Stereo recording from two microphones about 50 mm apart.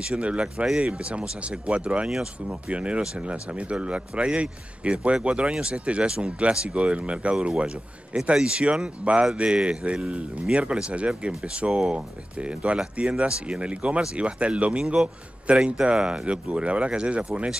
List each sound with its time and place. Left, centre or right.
0.0 s a man's voice: right
0.7 s speech: centre
1.0 s a man's voice: right